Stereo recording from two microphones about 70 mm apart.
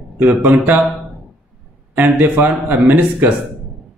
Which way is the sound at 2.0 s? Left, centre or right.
Right.